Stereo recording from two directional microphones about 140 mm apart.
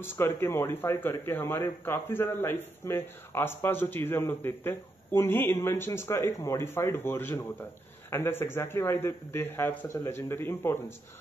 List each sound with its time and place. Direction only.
0.0 s a man's voice: 15° left (ahead or behind)